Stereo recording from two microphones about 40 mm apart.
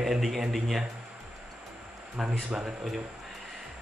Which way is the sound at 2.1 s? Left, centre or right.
Right.